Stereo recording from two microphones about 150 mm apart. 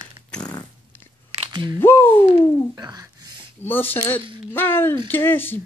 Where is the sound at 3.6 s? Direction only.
15° left (ahead or behind).